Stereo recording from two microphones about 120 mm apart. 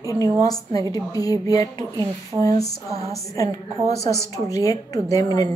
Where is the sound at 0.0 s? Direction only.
30° left (ahead or behind).